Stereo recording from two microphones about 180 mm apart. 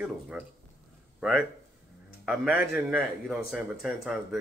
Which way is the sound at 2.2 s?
5° right (ahead or behind).